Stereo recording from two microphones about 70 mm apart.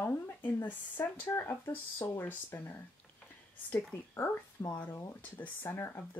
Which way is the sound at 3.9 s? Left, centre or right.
Left.